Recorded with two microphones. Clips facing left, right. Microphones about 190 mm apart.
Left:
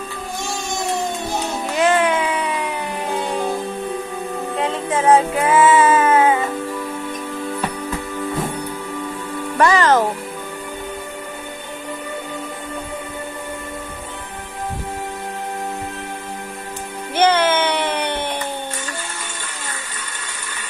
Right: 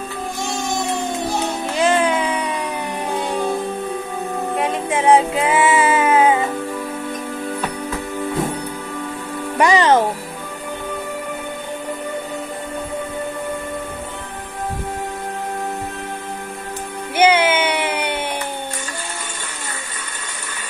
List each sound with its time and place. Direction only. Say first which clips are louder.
1.8 s music: even; 20° right (ahead or behind)
4.6 s music: left 1 dB; 15° right (ahead or behind)
9.6 s music: right 1 dB; 15° right (ahead or behind)
17.1 s music: right 1 dB; 10° right (ahead or behind)